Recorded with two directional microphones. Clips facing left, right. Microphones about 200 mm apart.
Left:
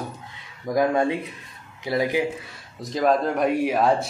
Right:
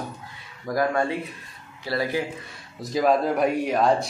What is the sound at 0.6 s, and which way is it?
Speech, 20° left (ahead or behind).